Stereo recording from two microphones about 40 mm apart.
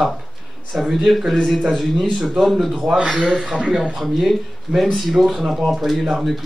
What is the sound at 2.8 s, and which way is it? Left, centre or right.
Speech, right.